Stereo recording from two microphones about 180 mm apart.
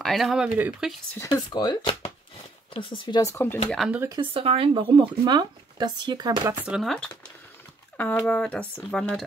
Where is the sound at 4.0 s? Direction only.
20° right (ahead or behind).